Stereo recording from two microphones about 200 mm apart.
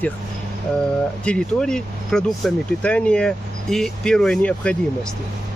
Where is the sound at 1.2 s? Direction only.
5° left (ahead or behind).